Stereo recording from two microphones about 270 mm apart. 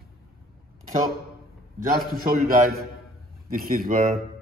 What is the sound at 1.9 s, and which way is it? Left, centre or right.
A man's voice, right.